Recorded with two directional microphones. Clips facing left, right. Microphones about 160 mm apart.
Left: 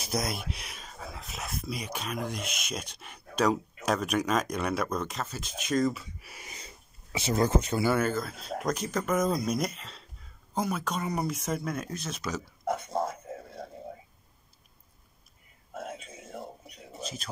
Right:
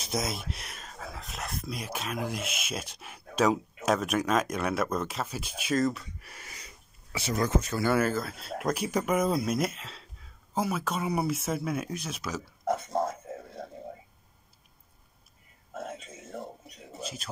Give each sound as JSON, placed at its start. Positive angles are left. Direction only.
{"t": 0.0, "sound": "speech", "side_deg": 0}
{"t": 6.5, "sound": "a sound", "side_deg": 20}
{"t": 7.9, "sound": "speech", "side_deg": -5}
{"t": 17.0, "sound": "speech", "side_deg": -5}